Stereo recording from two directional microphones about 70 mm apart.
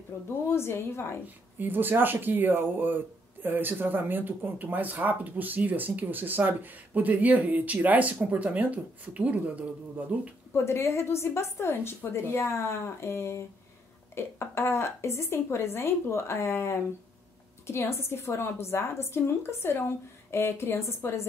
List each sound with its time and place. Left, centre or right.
0.1 s a woman's voice: left
1.2 s speech: right
10.5 s a woman's voice: left